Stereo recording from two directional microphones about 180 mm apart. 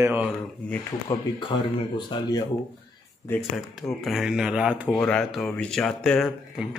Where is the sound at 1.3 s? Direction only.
25° left (ahead or behind).